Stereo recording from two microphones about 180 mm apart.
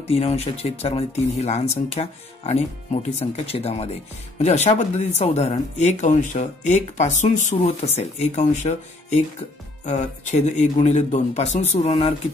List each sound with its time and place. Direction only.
0.1 s speech: 35° left (ahead or behind)